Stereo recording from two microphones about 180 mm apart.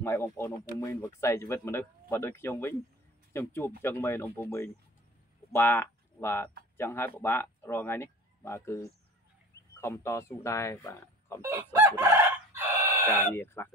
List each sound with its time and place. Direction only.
0.0 s speech: 15° left (ahead or behind)
11.4 s chicken: 15° right (ahead or behind)
13.1 s speech: 15° left (ahead or behind)